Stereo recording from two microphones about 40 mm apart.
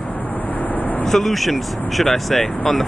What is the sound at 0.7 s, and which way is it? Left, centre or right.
Vehicle, left.